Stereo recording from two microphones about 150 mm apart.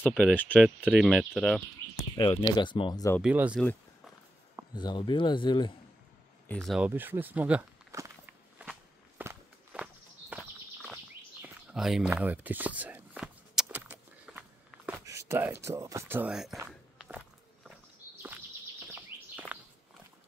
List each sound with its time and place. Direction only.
0.4 s speech: 10° left (ahead or behind)
0.7 s speech: 5° right (ahead or behind)
2.0 s speech: 30° left (ahead or behind)
3.2 s speech: 10° right (ahead or behind)
4.7 s speech: 30° left (ahead or behind)
6.5 s speech: centre (ahead or behind)
6.9 s speech: 15° right (ahead or behind)
7.9 s walk: 15° right (ahead or behind)
10.3 s horse: centre (ahead or behind)
11.4 s a sound: 5° right (ahead or behind)
15.0 s speech: 20° right (ahead or behind)
17.0 s walk: 5° right (ahead or behind)
19.1 s a sound: 15° right (ahead or behind)
19.5 s walk: 10° right (ahead or behind)